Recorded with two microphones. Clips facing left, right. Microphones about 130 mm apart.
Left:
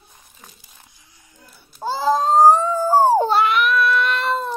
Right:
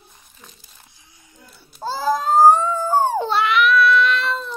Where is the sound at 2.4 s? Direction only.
35° left (ahead or behind).